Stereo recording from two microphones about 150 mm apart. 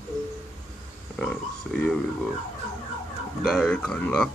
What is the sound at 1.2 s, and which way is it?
Speech, 5° left (ahead or behind).